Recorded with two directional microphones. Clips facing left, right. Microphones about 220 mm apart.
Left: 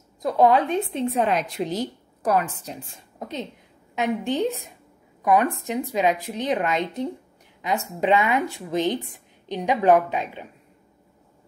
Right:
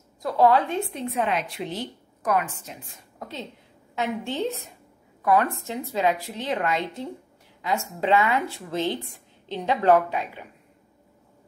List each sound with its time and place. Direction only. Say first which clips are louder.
0.2 s a woman's voice: left 1 dB; 20° left (ahead or behind)
1.1 s a woman's voice: left 1 dB; 40° left (ahead or behind)
3.2 s a woman's voice: left 4 dB; 20° left (ahead or behind)